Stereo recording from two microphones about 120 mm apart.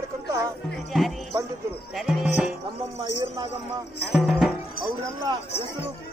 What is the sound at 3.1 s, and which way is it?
Speech, 35° right (ahead or behind).